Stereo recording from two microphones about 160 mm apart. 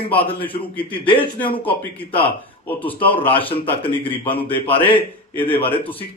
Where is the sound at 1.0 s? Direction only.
30° left (ahead or behind).